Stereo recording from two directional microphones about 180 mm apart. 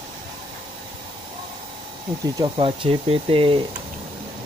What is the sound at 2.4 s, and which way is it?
Speech, 30° right (ahead or behind).